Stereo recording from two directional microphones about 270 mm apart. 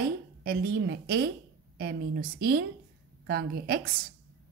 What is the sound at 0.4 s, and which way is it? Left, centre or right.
Speech, right.